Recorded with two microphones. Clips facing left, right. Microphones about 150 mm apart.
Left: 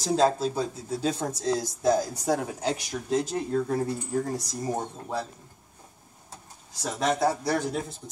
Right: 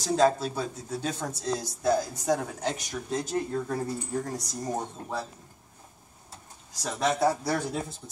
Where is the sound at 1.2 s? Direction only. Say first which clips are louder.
Left 3 dB; 25° left (ahead or behind).